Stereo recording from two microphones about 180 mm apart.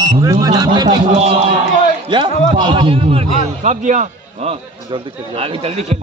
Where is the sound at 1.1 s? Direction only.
35° right (ahead or behind).